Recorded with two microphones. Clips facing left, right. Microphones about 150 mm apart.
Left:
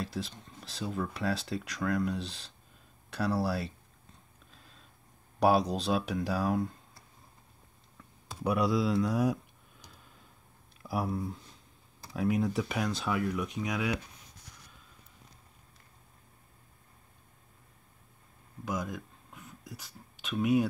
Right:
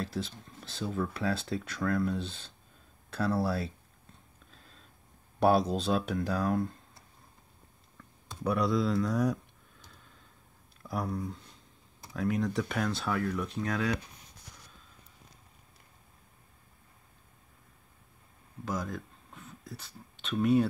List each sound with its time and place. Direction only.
0.0 s speech: centre (ahead or behind)
4.5 s a sound: centre (ahead or behind)
5.4 s speech: centre (ahead or behind)
8.0 s speech: 5° left (ahead or behind)
10.8 s speech: 5° left (ahead or behind)
18.7 s speech: 15° left (ahead or behind)
18.9 s a sound: centre (ahead or behind)
20.2 s speech: 5° left (ahead or behind)